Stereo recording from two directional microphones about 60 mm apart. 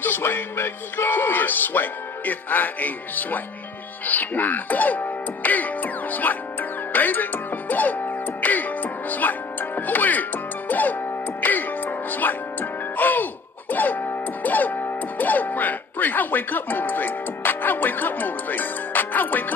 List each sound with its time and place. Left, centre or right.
0.0 s speech: left
6.9 s music: left